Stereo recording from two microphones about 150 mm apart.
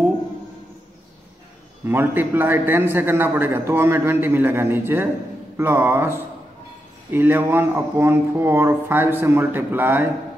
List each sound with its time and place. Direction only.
1.9 s a man's voice: 15° right (ahead or behind)